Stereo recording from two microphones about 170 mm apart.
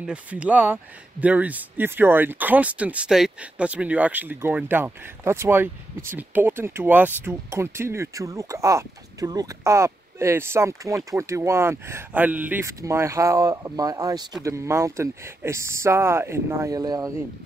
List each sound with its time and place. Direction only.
0.0 s speech: 5° right (ahead or behind)